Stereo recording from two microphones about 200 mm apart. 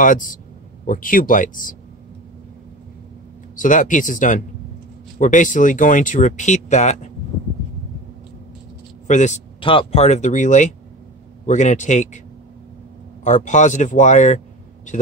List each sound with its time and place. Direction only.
0.0 s speech: 40° left (ahead or behind)
3.5 s speech: 40° left (ahead or behind)
9.0 s speech: 35° left (ahead or behind)
13.2 s speech: 40° left (ahead or behind)